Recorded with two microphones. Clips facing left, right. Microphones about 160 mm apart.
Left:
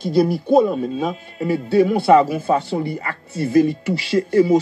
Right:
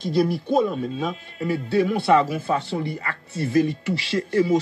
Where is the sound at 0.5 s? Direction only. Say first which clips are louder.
Left 6 dB; 40° left (ahead or behind).